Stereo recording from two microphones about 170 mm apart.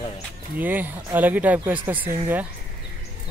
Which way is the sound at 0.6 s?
10° right (ahead or behind).